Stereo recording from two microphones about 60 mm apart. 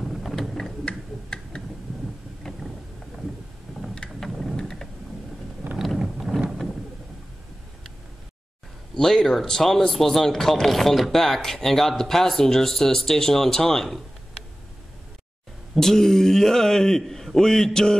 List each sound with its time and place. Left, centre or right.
0.1 s a sound: centre
0.8 s tick-tock: centre
2.4 s vehicle: centre
3.7 s vehicle: centre
4.2 s thunder: centre
5.6 s a sound: right
5.9 s a sound: centre
8.9 s speech: centre
15.7 s speech: centre